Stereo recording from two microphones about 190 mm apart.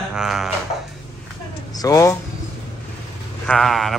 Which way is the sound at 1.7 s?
20° left (ahead or behind).